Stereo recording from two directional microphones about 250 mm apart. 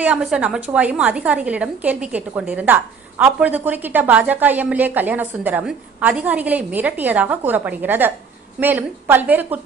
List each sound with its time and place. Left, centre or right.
0.0 s a woman's voice: centre